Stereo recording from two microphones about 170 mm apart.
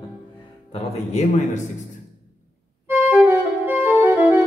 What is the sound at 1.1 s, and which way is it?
Speech, 40° left (ahead or behind).